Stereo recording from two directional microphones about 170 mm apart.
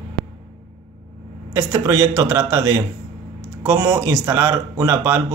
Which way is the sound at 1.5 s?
20° right (ahead or behind).